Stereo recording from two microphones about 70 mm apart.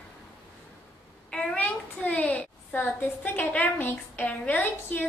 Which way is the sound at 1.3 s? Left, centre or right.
Centre.